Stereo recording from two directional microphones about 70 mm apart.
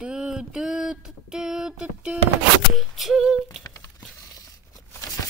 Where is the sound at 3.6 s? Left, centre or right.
Left.